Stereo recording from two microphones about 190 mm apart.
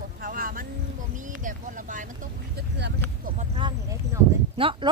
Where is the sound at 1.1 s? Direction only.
45° right (ahead or behind).